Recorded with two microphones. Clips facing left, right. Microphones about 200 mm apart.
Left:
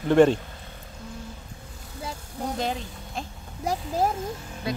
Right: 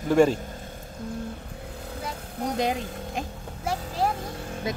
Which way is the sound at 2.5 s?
15° right (ahead or behind).